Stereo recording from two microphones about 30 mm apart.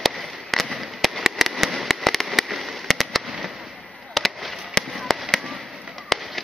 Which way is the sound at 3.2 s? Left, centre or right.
Right.